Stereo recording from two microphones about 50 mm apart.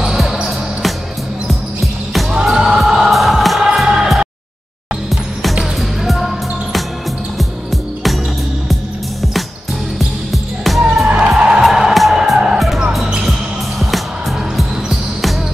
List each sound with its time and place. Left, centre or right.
0.0 s basketball bounce: centre
2.3 s music: centre
9.9 s music: centre
11.1 s music: right
11.6 s music: centre
14.6 s basketball bounce: centre